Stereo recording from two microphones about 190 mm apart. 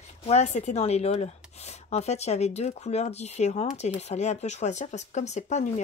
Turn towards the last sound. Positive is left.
turn(degrees=35)  # may be behind; listen again after turning